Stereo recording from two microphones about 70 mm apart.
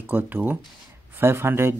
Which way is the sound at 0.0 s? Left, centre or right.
Right.